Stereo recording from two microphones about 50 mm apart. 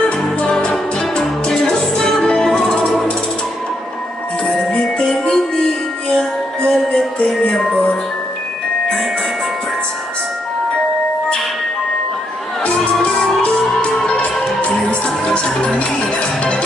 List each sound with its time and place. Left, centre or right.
0.5 s music: centre
4.5 s music: left
12.6 s music: left